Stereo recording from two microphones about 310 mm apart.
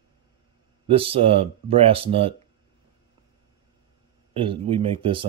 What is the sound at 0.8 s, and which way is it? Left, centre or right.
Speech, centre.